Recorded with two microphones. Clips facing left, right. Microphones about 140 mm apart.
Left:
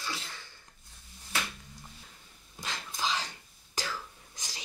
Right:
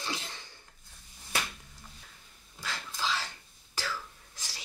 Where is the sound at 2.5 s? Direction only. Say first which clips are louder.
Left 1 dB; 20° left (ahead or behind).